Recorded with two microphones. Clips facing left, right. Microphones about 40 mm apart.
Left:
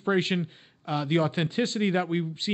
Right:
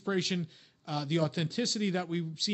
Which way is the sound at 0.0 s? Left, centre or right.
Left.